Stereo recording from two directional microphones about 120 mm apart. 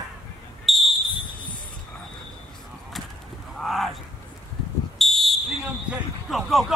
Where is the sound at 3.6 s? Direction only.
Centre (ahead or behind).